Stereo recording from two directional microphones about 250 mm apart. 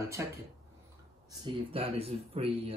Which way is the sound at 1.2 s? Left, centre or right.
Centre.